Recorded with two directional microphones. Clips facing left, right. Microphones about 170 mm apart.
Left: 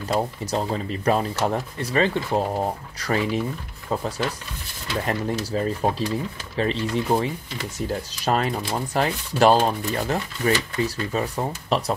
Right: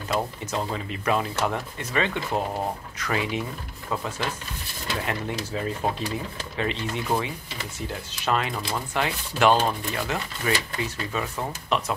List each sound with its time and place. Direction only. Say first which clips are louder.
0.1 s speech: left 3 dB; 35° left (ahead or behind)
5.0 s speech: left 7 dB; 35° left (ahead or behind)